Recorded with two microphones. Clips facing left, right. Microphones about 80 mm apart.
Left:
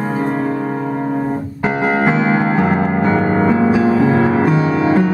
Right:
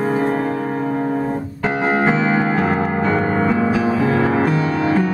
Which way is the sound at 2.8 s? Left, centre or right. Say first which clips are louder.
Left 3 dB; centre.